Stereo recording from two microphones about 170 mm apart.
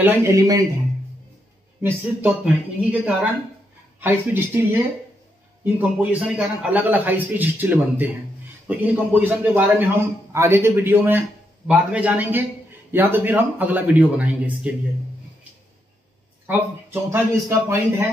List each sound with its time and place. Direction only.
0.0 s a man's voice: 15° right (ahead or behind)
1.8 s a man's voice: 10° right (ahead or behind)
16.4 s a man's voice: 15° right (ahead or behind)